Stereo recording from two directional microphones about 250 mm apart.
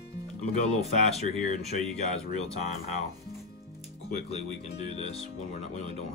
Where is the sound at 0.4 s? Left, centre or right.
Left.